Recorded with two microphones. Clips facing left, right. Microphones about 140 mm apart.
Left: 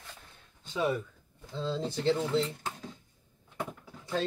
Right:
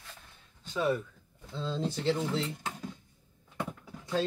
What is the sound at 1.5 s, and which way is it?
Speech, 10° left (ahead or behind).